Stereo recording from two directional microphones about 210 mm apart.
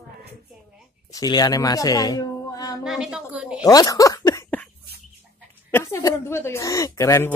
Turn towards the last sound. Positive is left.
turn(degrees=10)  # may be behind; listen again after turning